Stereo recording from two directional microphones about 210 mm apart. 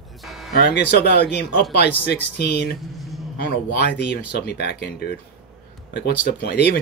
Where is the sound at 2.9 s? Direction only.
Centre (ahead or behind).